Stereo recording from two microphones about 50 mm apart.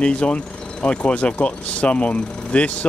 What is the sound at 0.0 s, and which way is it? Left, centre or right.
Speech, left.